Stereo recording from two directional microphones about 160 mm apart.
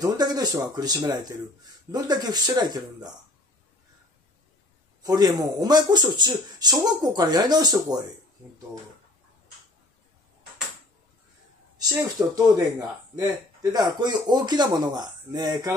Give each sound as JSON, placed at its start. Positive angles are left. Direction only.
{"t": 0.0, "sound": "speech", "side_deg": -25}
{"t": 5.0, "sound": "speech", "side_deg": -25}
{"t": 12.2, "sound": "speech", "side_deg": -20}